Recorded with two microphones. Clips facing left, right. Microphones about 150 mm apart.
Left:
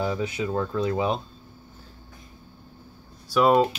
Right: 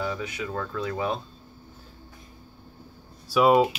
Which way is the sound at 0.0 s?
30° left (ahead or behind).